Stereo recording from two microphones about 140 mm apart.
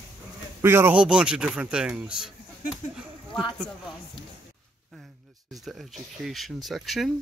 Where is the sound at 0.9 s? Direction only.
5° right (ahead or behind).